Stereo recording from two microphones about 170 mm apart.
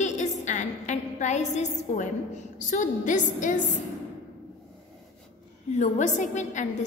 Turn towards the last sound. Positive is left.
turn(degrees=45)  # may be behind; listen again after turning